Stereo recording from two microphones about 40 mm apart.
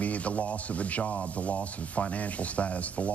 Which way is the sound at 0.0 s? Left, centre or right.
Left.